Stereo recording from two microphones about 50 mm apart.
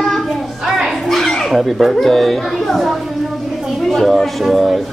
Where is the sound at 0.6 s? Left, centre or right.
Centre.